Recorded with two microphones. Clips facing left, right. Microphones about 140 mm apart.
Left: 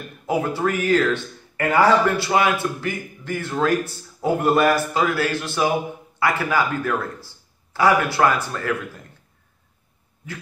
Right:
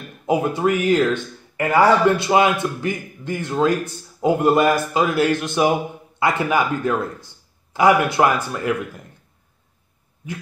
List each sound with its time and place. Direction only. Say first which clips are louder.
0.3 s speech: right 3 dB; 15° right (ahead or behind)
2.0 s a man's voice: right 3 dB; 20° right (ahead or behind)